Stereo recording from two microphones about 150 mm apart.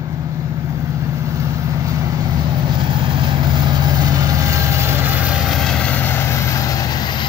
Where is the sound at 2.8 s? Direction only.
35° right (ahead or behind).